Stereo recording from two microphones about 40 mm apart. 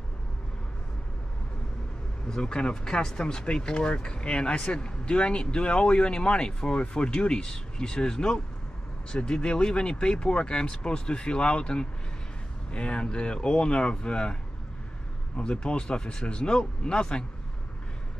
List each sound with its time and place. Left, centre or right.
2.2 s speech: centre